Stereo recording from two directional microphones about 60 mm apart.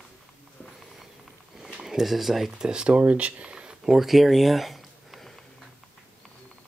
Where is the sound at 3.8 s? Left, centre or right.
Centre.